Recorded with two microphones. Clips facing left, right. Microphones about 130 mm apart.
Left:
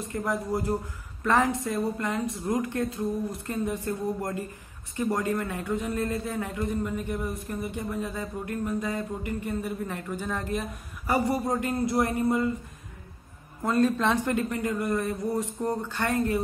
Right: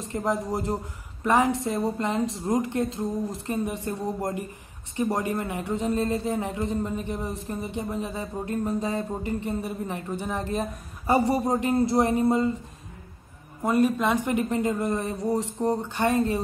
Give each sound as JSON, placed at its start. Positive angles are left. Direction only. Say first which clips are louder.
{"t": 0.0, "sound": "a man's voice", "louder": "right 3 dB", "side_deg": -25}
{"t": 13.6, "sound": "a man's voice", "louder": "right 2 dB", "side_deg": -15}